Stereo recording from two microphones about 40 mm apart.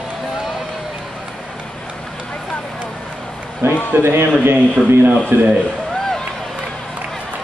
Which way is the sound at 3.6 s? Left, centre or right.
Right.